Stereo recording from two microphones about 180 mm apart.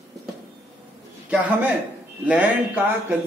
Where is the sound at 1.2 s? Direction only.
10° right (ahead or behind).